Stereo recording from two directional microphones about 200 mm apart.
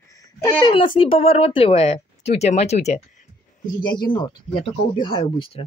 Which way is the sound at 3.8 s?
25° left (ahead or behind).